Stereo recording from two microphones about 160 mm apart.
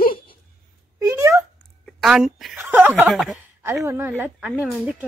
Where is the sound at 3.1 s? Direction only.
Centre (ahead or behind).